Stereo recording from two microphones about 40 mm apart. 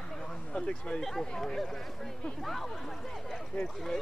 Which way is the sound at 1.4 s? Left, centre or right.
Centre.